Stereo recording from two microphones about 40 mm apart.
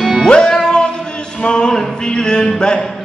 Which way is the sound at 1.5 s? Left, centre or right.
Left.